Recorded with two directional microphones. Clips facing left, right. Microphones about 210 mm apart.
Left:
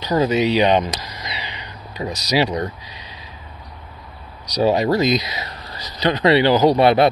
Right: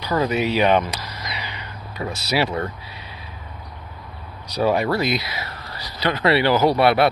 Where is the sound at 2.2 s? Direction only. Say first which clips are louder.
Left 3 dB; 15° left (ahead or behind).